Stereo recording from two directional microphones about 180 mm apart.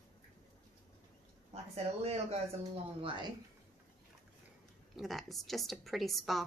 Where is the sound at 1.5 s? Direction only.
35° right (ahead or behind).